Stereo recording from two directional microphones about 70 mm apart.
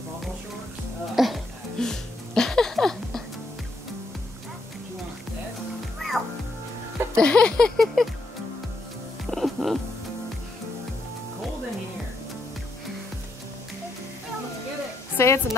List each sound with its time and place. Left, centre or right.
1.1 s music: centre
5.9 s music: centre
7.2 s a sound: centre
9.3 s music: centre
15.1 s music: left